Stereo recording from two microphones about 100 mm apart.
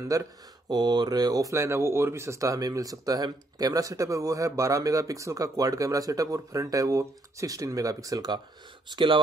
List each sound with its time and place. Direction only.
0.1 s speech: 40° right (ahead or behind)
8.8 s speech: 50° right (ahead or behind)